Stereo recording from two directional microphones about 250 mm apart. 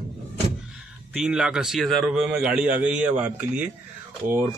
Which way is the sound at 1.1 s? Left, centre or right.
Centre.